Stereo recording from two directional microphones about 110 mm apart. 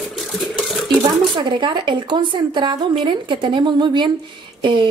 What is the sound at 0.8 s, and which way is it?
A woman's voice, 45° right (ahead or behind).